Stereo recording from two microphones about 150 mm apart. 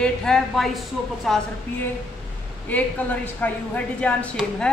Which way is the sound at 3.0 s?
10° left (ahead or behind).